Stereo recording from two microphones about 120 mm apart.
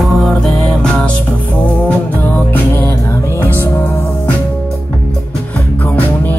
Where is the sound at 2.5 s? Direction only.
20° left (ahead or behind).